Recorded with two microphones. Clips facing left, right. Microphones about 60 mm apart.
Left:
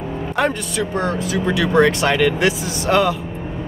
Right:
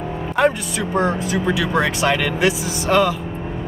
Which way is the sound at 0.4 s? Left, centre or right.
Centre.